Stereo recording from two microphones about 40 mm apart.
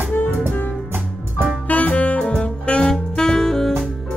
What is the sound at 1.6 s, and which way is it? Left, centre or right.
Saxophone, left.